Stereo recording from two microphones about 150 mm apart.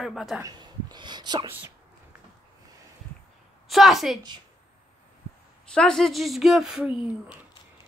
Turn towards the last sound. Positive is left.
turn(degrees=-5)  # may be behind; listen again after turning